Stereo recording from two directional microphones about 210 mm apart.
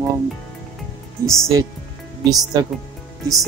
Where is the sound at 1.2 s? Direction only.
Centre (ahead or behind).